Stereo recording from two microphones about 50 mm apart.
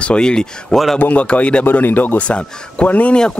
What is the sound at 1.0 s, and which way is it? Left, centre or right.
Speech, left.